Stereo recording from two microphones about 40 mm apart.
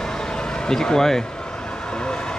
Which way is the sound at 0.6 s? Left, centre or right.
Centre.